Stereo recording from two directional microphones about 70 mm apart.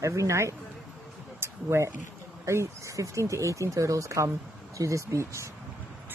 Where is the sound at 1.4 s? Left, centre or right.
Right.